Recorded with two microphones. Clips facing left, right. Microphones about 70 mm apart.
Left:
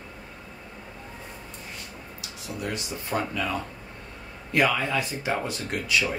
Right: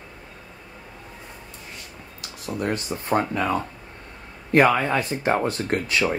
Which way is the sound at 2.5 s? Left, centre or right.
Right.